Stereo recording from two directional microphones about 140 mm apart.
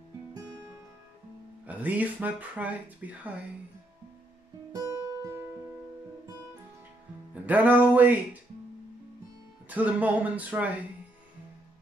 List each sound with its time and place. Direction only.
1.7 s speech: 10° right (ahead or behind)
4.7 s guitar: 25° right (ahead or behind)
7.4 s speech: 10° right (ahead or behind)
9.7 s speech: 10° right (ahead or behind)